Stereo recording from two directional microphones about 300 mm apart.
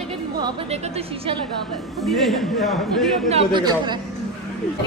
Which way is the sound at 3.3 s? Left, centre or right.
Centre.